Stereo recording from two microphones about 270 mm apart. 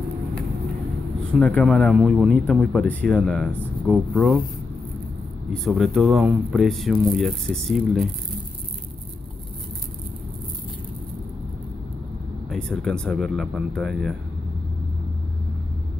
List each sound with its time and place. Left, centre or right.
1.4 s speech: centre
5.5 s speech: centre
12.4 s speech: centre